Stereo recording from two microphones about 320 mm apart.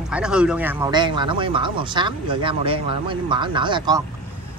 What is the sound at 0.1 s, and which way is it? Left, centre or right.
Speech, centre.